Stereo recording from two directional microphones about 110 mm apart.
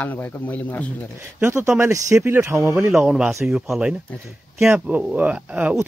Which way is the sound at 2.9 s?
10° right (ahead or behind).